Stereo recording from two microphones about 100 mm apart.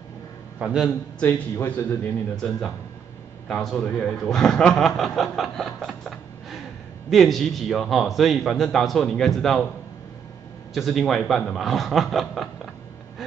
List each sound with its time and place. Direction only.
0.6 s a man's voice: 10° right (ahead or behind)
1.2 s a man's voice: 25° left (ahead or behind)
2.3 s a man's voice: 5° left (ahead or behind)
10.7 s a man's voice: centre (ahead or behind)